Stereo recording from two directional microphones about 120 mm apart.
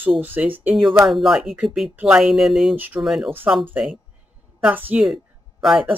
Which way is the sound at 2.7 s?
15° right (ahead or behind).